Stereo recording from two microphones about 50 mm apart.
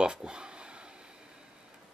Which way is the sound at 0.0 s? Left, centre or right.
Centre.